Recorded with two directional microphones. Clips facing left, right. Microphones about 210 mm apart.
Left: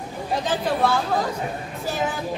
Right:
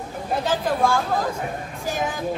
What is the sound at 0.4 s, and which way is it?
A woman's voice, 10° right (ahead or behind).